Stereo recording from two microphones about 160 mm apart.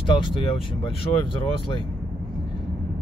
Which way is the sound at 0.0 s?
30° left (ahead or behind).